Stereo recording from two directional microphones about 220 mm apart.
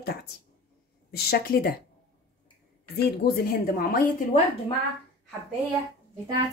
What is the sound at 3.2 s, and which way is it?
Speech, 45° left (ahead or behind).